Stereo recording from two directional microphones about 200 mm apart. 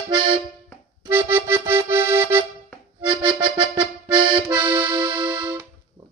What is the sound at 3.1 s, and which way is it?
Accordion, 25° right (ahead or behind).